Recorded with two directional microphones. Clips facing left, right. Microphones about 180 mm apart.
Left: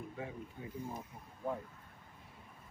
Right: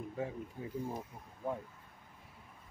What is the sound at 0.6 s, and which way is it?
Speech, 35° right (ahead or behind).